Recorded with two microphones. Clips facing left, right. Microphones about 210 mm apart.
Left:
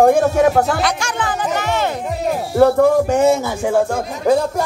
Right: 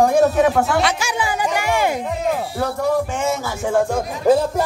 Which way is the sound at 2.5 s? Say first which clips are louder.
Left 13 dB; 50° left (ahead or behind).